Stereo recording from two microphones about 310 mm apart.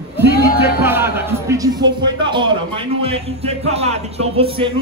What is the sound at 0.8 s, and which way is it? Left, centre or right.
Music, centre.